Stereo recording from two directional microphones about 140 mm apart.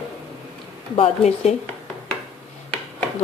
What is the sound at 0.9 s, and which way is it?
Speech, 50° left (ahead or behind).